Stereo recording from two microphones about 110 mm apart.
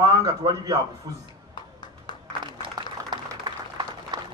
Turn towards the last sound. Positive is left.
turn(degrees=-40)  # may be behind; listen again after turning